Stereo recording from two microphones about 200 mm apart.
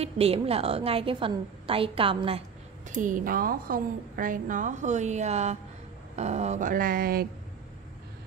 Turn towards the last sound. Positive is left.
turn(degrees=-50)  # may be behind; listen again after turning